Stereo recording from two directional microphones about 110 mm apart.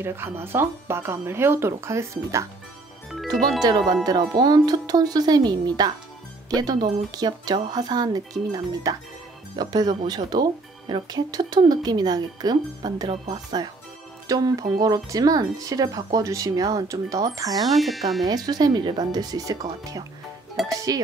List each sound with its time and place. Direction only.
0.0 s speech: 20° right (ahead or behind)
3.6 s speech: 40° right (ahead or behind)
17.7 s speech: centre (ahead or behind)
18.2 s speech: 35° right (ahead or behind)